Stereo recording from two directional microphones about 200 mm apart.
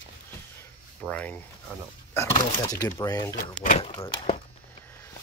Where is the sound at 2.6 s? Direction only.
20° left (ahead or behind).